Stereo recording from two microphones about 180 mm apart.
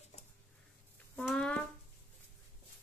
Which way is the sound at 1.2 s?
5° left (ahead or behind).